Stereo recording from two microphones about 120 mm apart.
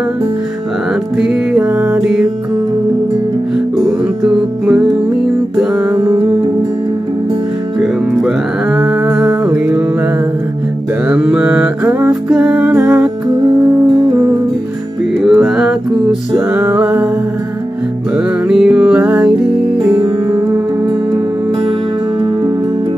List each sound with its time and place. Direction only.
1.1 s music: 10° right (ahead or behind)
4.2 s music: 5° right (ahead or behind)
8.7 s humming: 10° right (ahead or behind)
9.3 s music: 20° right (ahead or behind)
11.1 s mantra: 10° right (ahead or behind)
11.8 s music: 20° right (ahead or behind)
12.1 s music: 10° right (ahead or behind)
15.2 s music: centre (ahead or behind)
16.3 s music: 15° right (ahead or behind)
18.1 s music: 5° right (ahead or behind)